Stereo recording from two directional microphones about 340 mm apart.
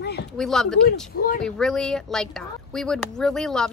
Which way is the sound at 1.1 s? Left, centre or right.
Left.